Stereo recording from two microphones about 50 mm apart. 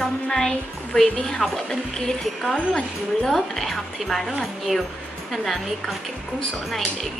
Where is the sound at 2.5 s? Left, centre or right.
Centre.